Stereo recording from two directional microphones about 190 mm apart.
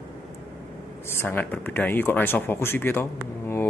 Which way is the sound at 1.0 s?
10° left (ahead or behind).